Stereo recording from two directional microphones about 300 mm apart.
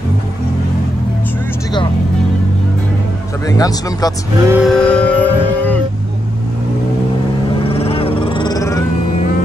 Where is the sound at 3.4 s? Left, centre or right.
Centre.